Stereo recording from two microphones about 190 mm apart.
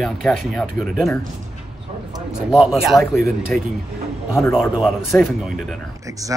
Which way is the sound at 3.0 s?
15° left (ahead or behind).